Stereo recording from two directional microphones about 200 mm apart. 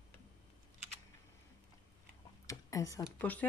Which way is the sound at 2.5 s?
15° left (ahead or behind).